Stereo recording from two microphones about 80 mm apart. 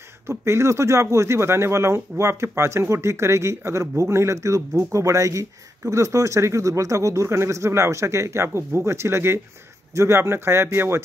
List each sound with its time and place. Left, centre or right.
0.3 s speech: right